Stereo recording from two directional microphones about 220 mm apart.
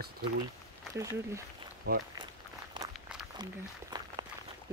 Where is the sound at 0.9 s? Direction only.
15° right (ahead or behind).